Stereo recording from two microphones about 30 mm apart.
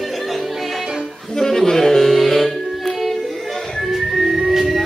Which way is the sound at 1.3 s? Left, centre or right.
Centre.